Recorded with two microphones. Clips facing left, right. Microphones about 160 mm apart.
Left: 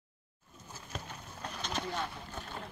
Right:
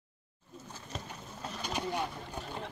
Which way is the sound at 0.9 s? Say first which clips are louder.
Right 1 dB; 5° right (ahead or behind).